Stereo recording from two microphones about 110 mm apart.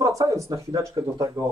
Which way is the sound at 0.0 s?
30° right (ahead or behind).